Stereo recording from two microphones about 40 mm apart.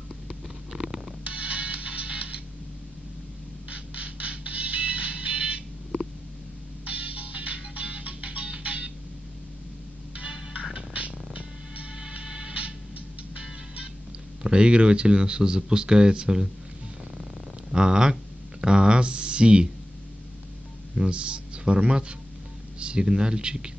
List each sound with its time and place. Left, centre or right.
0.7 s music: right
3.7 s music: right
6.8 s music: right
10.9 s music: right
14.4 s speech: right
17.2 s purr: right
18.6 s a sound: right
20.9 s speech: right